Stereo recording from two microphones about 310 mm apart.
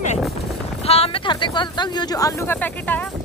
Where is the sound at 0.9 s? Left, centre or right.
Centre.